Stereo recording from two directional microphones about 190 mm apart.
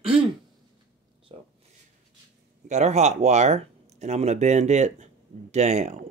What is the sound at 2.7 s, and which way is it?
Speech, 35° right (ahead or behind).